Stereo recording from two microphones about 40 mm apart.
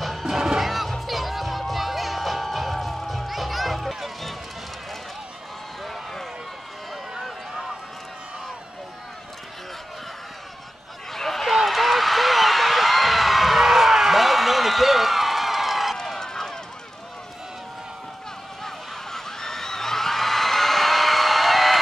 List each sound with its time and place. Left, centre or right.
0.0 s music: centre
0.3 s music: centre
7.2 s run: centre
11.1 s a sound: centre
16.2 s run: centre
19.1 s a sound: centre